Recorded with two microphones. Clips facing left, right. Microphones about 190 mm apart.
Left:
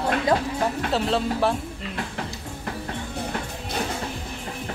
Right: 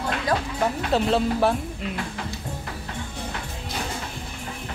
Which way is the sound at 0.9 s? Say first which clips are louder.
Right 5 dB; centre (ahead or behind).